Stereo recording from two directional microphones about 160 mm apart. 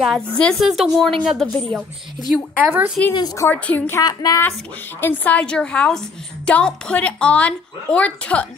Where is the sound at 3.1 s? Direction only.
25° left (ahead or behind).